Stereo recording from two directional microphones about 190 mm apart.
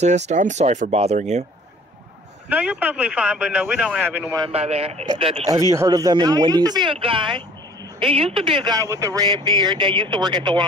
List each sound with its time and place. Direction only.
0.3 s speech: 40° right (ahead or behind)
2.5 s speech: 5° right (ahead or behind)
4.5 s speech: 30° right (ahead or behind)
5.5 s speech: 15° right (ahead or behind)